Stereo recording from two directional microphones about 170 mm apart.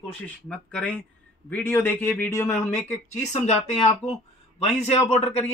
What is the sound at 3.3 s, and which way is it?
Speech, 45° left (ahead or behind).